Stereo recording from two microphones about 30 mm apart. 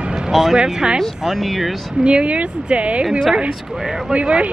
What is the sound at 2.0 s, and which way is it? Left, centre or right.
Speech, right.